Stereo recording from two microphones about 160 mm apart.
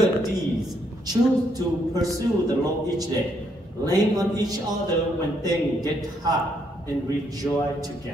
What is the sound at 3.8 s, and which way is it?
Speech, 25° right (ahead or behind).